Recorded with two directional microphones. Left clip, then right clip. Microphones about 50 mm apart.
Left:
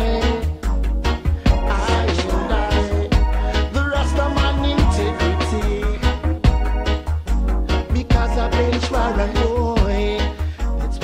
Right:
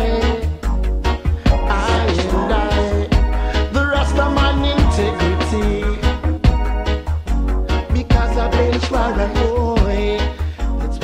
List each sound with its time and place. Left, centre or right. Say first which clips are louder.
0.0 s music: right 2 dB; right